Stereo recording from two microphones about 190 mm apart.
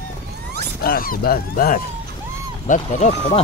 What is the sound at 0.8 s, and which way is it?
Speech, 50° left (ahead or behind).